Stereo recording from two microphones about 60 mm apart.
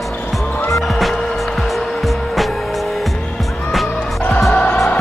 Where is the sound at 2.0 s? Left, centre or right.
Centre.